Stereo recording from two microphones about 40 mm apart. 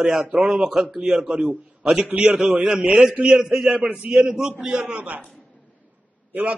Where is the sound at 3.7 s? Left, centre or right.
Right.